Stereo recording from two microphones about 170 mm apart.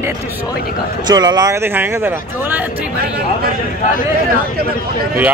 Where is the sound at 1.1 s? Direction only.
25° right (ahead or behind).